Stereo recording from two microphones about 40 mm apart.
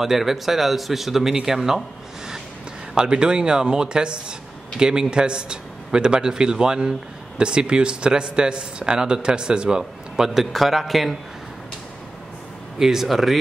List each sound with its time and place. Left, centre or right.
0.0 s speech: centre
2.9 s a man's voice: right; by 11.1 s centre
12.7 s speech: centre